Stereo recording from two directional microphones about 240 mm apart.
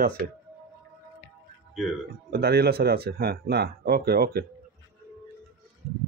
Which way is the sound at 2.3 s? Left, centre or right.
Right.